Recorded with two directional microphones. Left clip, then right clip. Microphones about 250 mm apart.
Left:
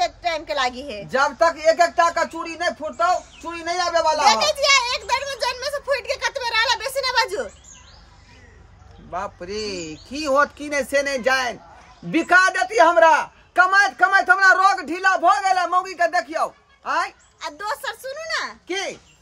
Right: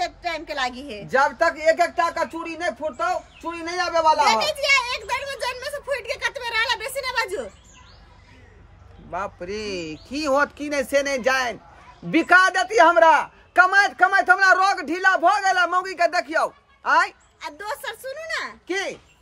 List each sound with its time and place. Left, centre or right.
0.0 s a woman's voice: centre
1.1 s a man's voice: centre
4.2 s a sound: centre
9.1 s a man's voice: centre
17.4 s a woman's voice: centre
18.7 s a man's voice: centre